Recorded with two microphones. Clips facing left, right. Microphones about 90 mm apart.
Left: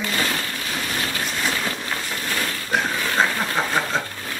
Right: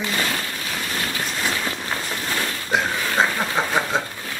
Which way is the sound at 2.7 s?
15° right (ahead or behind).